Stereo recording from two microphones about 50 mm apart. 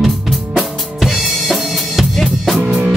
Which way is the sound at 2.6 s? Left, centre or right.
Centre.